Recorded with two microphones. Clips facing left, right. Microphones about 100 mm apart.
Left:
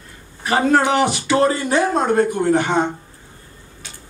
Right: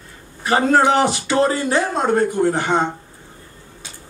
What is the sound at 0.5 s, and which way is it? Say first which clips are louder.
A woman's voice: right 1 dB; 30° right (ahead or behind).